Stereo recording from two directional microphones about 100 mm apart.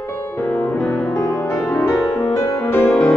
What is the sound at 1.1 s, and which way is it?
Music, 35° left (ahead or behind).